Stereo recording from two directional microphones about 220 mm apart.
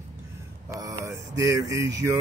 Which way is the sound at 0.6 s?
15° right (ahead or behind).